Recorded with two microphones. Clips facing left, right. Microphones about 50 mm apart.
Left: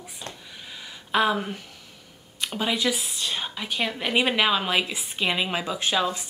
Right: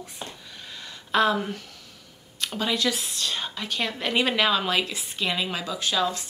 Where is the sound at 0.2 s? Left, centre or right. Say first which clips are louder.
Even; right.